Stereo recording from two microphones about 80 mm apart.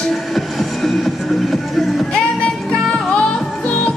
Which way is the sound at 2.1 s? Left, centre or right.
Centre.